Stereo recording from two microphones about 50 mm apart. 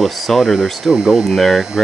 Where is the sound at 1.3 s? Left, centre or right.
Centre.